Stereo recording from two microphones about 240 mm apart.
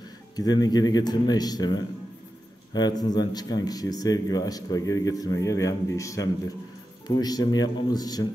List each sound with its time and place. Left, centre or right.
0.4 s speech: centre